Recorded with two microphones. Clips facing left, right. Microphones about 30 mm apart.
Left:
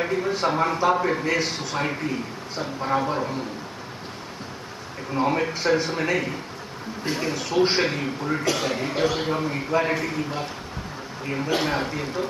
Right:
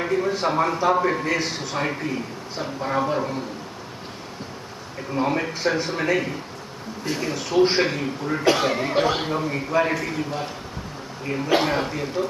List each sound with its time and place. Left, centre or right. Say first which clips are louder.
0.0 s a man's voice: right 1 dB; centre
5.1 s a man's voice: left 1 dB; centre
7.1 s a man's voice: even; centre
8.5 s speech: right 8 dB; right
9.3 s a man's voice: right 1 dB; centre
11.6 s a man's voice: right 2 dB; centre